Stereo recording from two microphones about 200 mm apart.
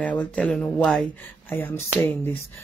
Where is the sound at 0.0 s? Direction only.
5° left (ahead or behind).